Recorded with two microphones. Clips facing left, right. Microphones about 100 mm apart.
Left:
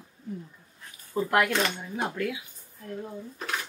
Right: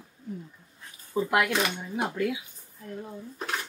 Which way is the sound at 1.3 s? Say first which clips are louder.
Left 2 dB; 10° right (ahead or behind).